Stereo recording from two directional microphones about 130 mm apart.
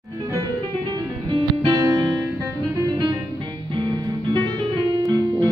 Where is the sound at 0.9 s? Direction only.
30° right (ahead or behind).